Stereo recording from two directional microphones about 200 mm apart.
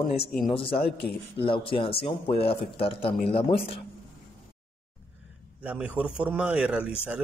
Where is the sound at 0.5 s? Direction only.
25° left (ahead or behind).